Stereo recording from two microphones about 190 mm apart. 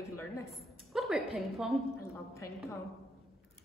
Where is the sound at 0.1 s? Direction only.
15° left (ahead or behind).